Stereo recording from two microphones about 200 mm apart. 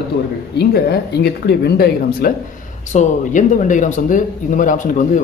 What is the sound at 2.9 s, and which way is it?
Speech, 35° left (ahead or behind).